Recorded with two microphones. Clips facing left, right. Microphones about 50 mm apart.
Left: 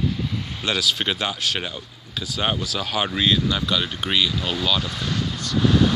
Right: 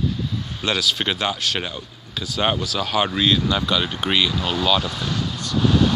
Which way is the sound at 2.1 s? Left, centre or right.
Centre.